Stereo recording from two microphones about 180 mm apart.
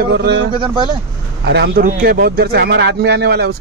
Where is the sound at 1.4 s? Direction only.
70° right (ahead or behind).